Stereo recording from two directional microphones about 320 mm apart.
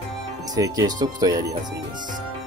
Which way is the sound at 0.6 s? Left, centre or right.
Centre.